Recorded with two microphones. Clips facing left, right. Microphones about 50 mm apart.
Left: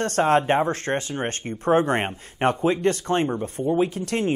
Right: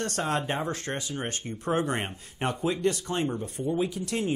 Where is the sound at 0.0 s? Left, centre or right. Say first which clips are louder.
Left 9 dB; left.